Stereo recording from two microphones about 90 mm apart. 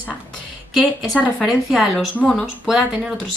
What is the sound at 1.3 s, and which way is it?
Speech, 5° right (ahead or behind).